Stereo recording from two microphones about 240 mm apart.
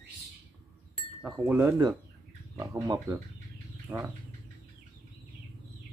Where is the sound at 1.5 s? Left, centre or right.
Centre.